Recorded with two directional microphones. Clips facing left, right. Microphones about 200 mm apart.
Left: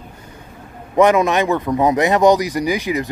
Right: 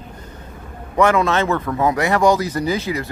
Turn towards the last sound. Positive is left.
turn(degrees=15)  # may be behind; listen again after turning